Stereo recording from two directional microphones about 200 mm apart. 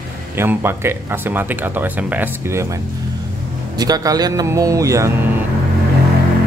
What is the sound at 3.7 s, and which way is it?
Speech, 20° right (ahead or behind).